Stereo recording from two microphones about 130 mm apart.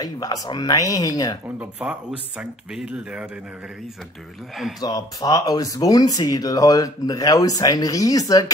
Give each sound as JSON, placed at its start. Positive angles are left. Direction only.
{"t": 0.0, "sound": "speech", "side_deg": 30}
{"t": 1.6, "sound": "speech", "side_deg": -5}
{"t": 4.7, "sound": "speech", "side_deg": 30}